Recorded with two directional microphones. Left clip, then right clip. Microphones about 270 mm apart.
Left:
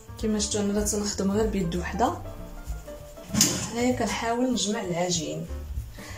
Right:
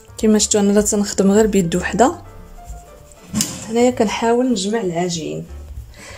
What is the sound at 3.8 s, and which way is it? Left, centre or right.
Speech, right.